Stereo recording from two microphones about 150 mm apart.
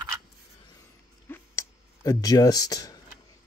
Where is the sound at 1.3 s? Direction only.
20° left (ahead or behind).